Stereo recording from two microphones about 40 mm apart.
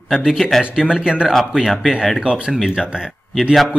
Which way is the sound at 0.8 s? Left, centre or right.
Right.